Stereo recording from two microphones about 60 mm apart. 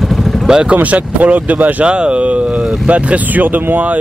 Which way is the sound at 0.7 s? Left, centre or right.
Right.